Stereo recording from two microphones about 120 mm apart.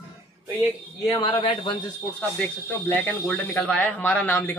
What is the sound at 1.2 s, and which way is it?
Speech, 45° left (ahead or behind).